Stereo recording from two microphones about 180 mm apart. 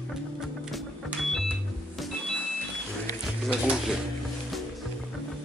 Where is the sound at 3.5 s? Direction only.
5° right (ahead or behind).